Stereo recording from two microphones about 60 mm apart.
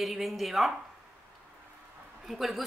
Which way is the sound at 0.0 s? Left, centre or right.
Centre.